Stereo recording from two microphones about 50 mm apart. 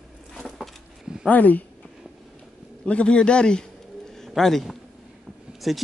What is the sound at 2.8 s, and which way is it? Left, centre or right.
Speech, left.